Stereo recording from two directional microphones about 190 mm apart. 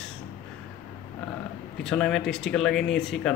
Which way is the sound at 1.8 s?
5° left (ahead or behind).